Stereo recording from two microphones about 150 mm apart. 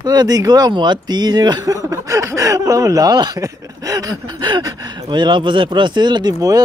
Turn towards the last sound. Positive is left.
turn(degrees=-25)  # may be behind; listen again after turning